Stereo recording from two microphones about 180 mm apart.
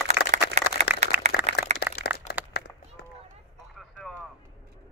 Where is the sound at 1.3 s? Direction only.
60° left (ahead or behind).